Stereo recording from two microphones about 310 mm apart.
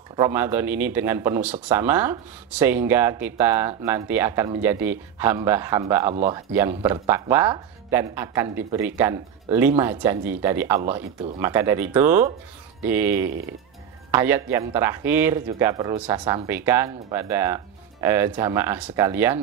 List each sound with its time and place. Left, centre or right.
0.1 s speech: centre
6.1 s speech: right
6.5 s speech: centre